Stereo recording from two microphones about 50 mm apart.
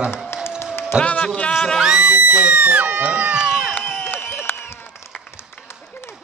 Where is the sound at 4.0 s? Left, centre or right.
Left.